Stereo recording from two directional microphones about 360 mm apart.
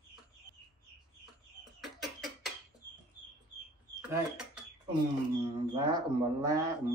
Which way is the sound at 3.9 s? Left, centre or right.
Centre.